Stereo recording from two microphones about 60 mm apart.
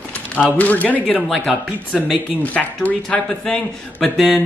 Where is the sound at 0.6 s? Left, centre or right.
Left.